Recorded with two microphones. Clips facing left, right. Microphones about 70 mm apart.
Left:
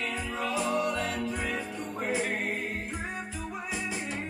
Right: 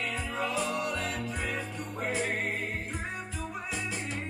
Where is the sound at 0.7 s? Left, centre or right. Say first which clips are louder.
Left 3 dB; centre.